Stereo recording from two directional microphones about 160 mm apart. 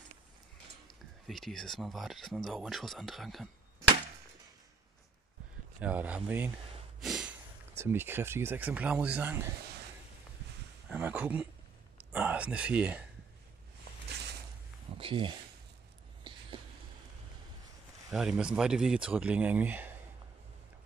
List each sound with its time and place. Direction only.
1.2 s speech: centre (ahead or behind)
5.8 s speech: 10° right (ahead or behind)
7.0 s snort: 5° right (ahead or behind)
7.7 s speech: 15° right (ahead or behind)
10.9 s speech: 10° right (ahead or behind)
14.9 s a sound: 35° right (ahead or behind)
18.1 s speech: 5° right (ahead or behind)